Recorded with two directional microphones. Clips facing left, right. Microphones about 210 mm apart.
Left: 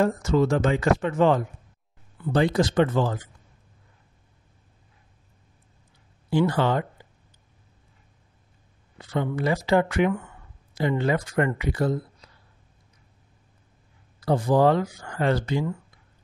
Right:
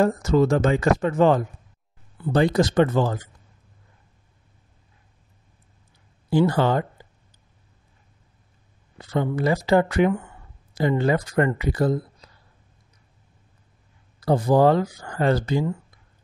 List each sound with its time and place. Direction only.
0.0 s speech: 40° right (ahead or behind)
6.3 s speech: 40° right (ahead or behind)
8.9 s speech: 40° right (ahead or behind)
14.2 s speech: 40° right (ahead or behind)